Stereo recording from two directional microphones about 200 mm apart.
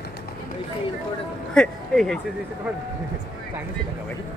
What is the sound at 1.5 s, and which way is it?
Speech, centre (ahead or behind).